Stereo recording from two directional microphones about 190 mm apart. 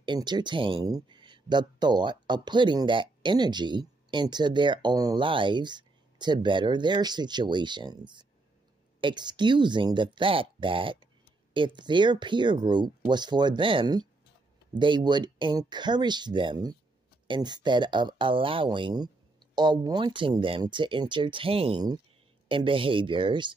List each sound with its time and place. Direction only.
0.0 s speech: 25° right (ahead or behind)